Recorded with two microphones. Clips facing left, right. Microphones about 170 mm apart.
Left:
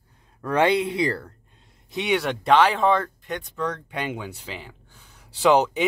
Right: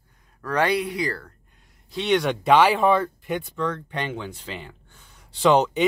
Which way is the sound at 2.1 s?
Centre (ahead or behind).